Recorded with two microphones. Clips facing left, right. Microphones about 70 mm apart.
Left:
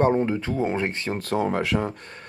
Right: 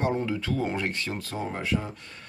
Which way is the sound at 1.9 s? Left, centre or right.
Left.